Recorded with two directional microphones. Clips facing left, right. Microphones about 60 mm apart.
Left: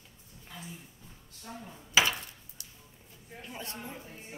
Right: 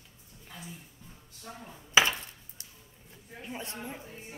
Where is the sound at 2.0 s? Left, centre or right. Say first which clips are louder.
Right 2 dB; right.